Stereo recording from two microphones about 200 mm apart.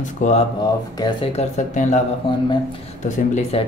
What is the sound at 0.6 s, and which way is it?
Speech, 20° left (ahead or behind).